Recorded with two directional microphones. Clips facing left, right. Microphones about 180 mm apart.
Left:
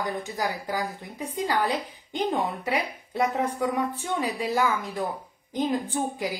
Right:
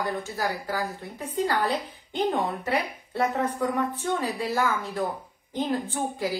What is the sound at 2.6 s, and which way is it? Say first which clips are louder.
A woman's voice: right 1 dB; 15° left (ahead or behind).